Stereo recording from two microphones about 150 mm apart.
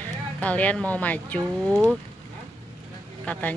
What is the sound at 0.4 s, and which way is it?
Speech, 10° left (ahead or behind).